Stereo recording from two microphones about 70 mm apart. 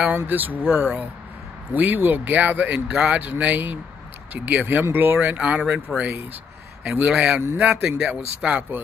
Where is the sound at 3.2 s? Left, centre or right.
Right.